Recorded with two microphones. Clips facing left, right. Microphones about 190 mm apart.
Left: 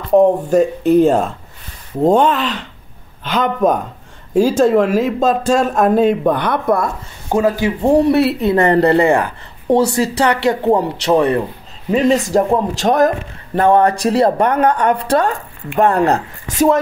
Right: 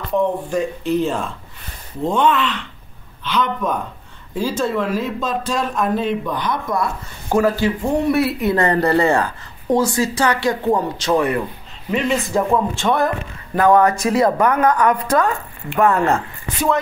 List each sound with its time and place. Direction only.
0.1 s a woman's voice: 40° left (ahead or behind); by 6.9 s 60° left (ahead or behind)
7.2 s speech: 20° left (ahead or behind)
7.8 s a woman's voice: 35° left (ahead or behind); by 9.3 s 15° left (ahead or behind)
9.8 s speech: 65° left (ahead or behind)
10.2 s speech: 25° left (ahead or behind)
11.9 s a woman's voice: 40° left (ahead or behind)
13.6 s a woman's voice: 30° left (ahead or behind); by 16.8 s 45° left (ahead or behind)